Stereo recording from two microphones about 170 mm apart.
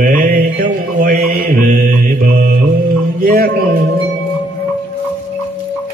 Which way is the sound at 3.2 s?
60° right (ahead or behind).